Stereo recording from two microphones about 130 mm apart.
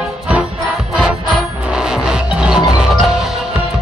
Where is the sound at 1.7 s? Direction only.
5° right (ahead or behind).